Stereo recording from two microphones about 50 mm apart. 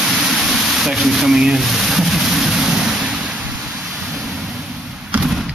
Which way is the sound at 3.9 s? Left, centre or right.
Centre.